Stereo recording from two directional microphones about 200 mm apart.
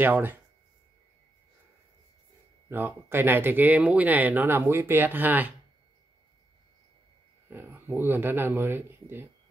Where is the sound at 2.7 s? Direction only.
10° right (ahead or behind).